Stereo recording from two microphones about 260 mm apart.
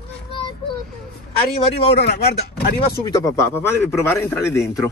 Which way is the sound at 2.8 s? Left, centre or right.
Centre.